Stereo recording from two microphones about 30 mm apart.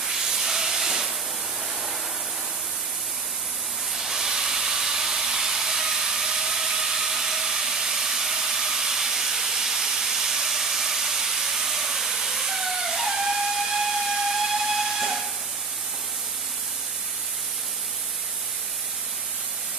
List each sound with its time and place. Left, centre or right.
0.0 s steam: centre
3.9 s steam: centre